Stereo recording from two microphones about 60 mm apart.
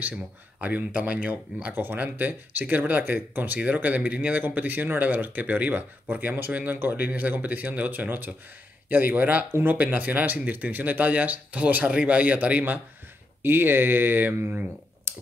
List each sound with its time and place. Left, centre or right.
0.6 s speech: right
1.7 s speech: right
13.4 s speech: right